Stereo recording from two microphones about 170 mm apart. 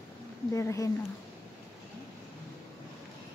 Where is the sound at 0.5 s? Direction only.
15° left (ahead or behind).